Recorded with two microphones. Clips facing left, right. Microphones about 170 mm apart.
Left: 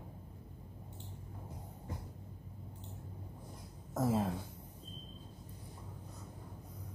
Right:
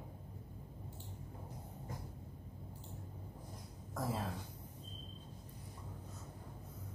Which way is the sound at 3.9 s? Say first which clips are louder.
Left 7 dB; 20° left (ahead or behind).